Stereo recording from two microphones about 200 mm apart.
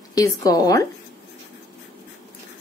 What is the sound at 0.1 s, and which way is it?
Speech, 15° left (ahead or behind).